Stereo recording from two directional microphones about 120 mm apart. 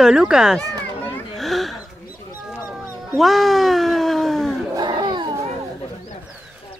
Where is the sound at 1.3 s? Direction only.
Centre (ahead or behind).